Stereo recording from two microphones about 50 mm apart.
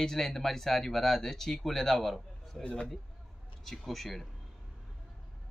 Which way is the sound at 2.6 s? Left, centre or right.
Centre.